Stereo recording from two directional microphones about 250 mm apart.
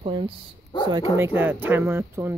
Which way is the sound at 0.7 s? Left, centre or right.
Centre.